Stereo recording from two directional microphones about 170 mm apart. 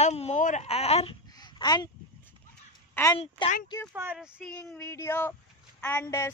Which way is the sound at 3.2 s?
35° left (ahead or behind).